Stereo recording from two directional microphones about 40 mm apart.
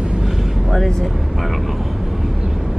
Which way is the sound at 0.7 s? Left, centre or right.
Centre.